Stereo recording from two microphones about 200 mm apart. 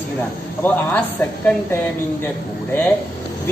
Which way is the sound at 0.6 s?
10° left (ahead or behind).